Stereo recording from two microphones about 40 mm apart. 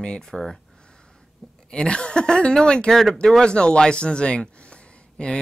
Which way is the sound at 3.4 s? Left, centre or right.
Left.